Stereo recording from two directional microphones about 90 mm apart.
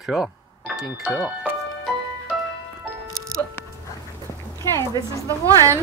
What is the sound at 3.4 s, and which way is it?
Music, 25° left (ahead or behind).